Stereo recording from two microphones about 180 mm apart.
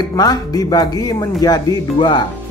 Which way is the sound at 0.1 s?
20° left (ahead or behind).